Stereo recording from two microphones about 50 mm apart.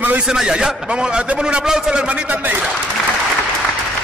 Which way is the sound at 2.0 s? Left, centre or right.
Right.